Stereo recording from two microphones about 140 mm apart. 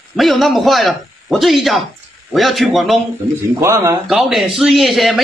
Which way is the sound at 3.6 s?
20° right (ahead or behind).